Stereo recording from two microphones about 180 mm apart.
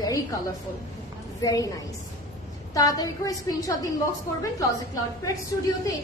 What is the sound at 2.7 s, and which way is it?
A woman's voice, 20° left (ahead or behind).